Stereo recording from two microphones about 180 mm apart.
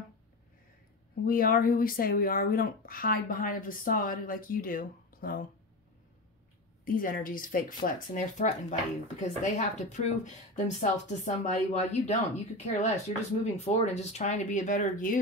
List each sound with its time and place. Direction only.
1.2 s speech: 50° left (ahead or behind)
6.8 s speech: 50° left (ahead or behind)